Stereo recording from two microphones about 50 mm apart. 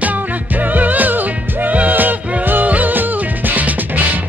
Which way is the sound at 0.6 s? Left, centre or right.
Right.